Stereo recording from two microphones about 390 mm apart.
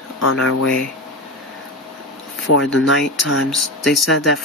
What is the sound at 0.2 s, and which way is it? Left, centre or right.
Speech, left.